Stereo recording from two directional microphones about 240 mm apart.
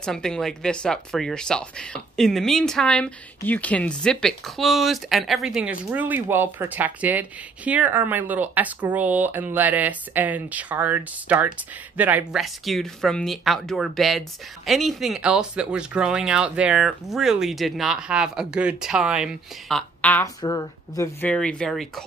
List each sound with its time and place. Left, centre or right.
0.0 s speech: centre